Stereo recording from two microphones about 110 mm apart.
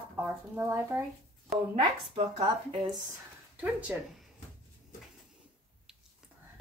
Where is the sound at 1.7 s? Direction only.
90° right.